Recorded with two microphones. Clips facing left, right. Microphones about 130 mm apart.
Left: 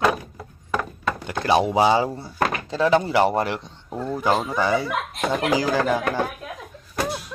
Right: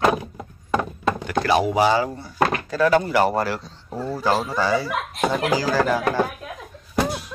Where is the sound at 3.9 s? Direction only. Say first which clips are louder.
Even; 5° right (ahead or behind).